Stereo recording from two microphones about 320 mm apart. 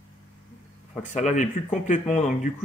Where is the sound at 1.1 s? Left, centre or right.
Left.